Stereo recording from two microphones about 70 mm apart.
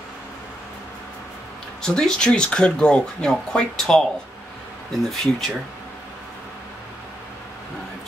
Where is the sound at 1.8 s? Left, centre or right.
Centre.